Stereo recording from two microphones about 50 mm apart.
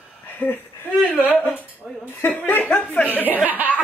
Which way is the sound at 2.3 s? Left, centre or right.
Left.